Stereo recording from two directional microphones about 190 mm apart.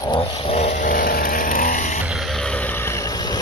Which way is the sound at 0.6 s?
40° left (ahead or behind).